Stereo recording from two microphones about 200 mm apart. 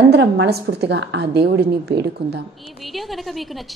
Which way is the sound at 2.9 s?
Centre (ahead or behind).